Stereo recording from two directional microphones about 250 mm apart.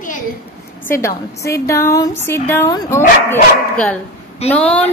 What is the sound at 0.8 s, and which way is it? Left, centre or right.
A woman's voice, centre.